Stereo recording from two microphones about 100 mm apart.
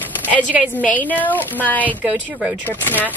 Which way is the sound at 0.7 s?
15° left (ahead or behind).